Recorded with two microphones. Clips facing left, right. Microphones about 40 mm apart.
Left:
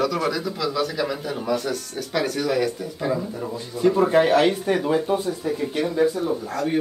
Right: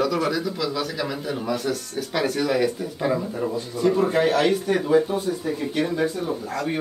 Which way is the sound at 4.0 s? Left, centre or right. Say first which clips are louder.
Left 4 dB; centre.